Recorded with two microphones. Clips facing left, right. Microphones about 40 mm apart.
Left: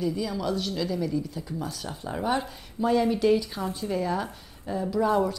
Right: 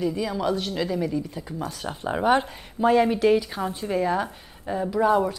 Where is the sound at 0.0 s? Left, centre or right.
Right.